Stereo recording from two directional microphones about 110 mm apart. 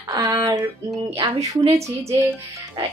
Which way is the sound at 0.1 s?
35° right (ahead or behind).